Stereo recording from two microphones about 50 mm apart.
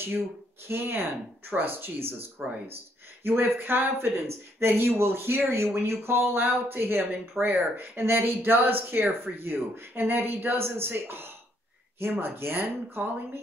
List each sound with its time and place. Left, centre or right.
0.0 s speech: right